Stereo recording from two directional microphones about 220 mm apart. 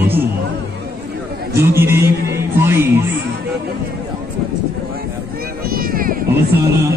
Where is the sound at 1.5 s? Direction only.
10° right (ahead or behind).